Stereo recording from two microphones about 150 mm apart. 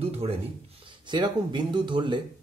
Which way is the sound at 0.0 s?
40° right (ahead or behind).